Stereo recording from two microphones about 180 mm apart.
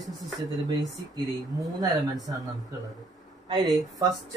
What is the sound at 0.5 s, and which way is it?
Speech, 20° right (ahead or behind).